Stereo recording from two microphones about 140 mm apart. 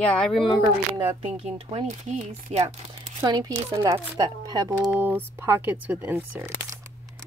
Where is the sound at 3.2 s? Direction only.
30° right (ahead or behind).